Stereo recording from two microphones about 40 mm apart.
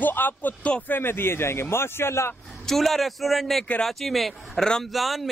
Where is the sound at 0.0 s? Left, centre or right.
Left.